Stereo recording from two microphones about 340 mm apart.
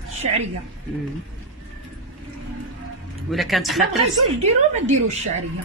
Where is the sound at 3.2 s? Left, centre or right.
Centre.